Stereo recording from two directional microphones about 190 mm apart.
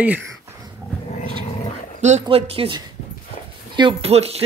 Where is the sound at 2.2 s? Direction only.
30° right (ahead or behind).